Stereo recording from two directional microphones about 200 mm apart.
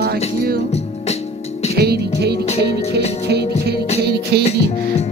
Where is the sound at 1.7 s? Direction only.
55° right (ahead or behind).